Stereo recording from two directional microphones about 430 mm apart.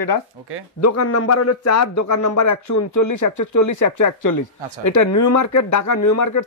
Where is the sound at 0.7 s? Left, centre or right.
Left.